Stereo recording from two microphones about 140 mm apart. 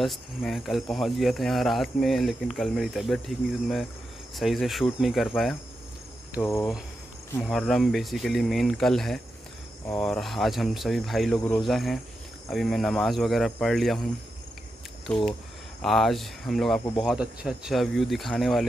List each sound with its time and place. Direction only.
0.0 s speech: centre (ahead or behind)
6.4 s speech: 20° left (ahead or behind)
7.4 s speech: 5° left (ahead or behind)
15.0 s speech: 5° left (ahead or behind)